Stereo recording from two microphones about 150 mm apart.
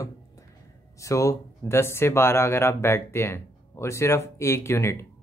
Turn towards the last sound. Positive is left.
turn(degrees=15)  # may be behind; listen again after turning